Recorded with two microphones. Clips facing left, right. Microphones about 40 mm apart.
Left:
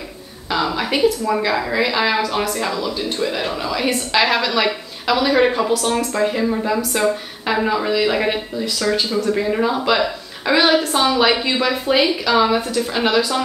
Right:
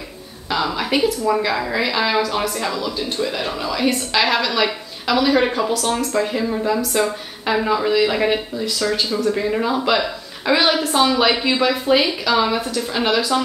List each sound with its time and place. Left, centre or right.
0.5 s a woman's voice: centre